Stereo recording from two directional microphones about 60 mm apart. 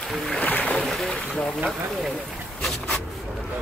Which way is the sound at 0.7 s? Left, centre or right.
Centre.